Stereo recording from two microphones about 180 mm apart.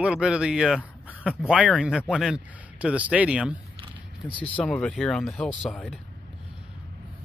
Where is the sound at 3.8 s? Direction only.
25° right (ahead or behind).